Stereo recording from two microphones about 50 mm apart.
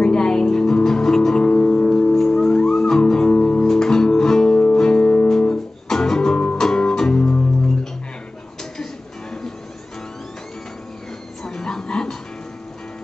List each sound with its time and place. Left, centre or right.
0.0 s music: centre
5.5 s music: centre
11.4 s dog: centre